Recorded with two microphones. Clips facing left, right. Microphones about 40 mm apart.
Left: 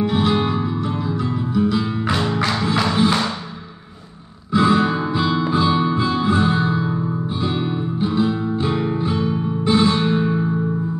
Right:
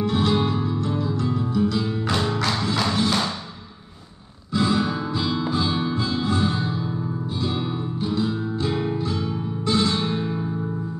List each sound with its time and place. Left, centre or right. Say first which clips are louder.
0.0 s music: left 3 dB; centre
4.6 s guitar: left 6 dB; left
5.4 s music: left 6 dB; left